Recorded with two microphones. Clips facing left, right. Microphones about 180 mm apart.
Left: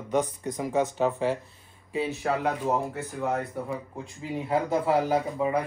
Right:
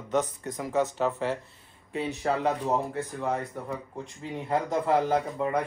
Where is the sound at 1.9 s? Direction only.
Centre (ahead or behind).